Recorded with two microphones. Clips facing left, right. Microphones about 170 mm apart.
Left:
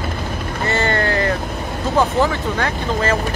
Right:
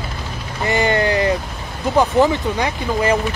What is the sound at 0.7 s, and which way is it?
Speech, 15° right (ahead or behind).